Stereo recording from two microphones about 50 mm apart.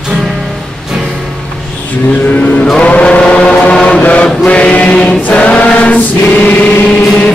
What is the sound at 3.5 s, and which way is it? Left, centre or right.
Chant, left.